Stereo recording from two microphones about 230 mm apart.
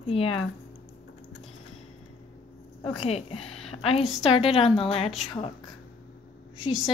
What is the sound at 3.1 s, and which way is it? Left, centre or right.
Speech, left.